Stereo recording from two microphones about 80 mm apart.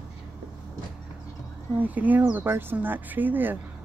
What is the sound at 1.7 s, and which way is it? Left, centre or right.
Speech, centre.